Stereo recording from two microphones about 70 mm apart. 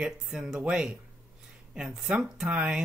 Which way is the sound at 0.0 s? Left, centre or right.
Centre.